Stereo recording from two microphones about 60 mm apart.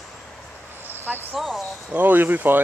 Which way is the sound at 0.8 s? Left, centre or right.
Right.